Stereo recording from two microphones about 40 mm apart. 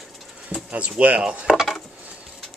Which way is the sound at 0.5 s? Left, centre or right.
Right.